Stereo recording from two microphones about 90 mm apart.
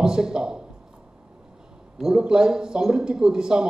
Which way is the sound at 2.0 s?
10° right (ahead or behind).